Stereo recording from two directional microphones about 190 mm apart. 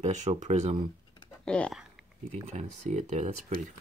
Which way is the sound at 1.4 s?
5° left (ahead or behind).